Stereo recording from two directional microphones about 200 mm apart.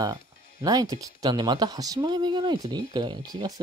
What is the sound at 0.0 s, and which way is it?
Speech, 20° right (ahead or behind).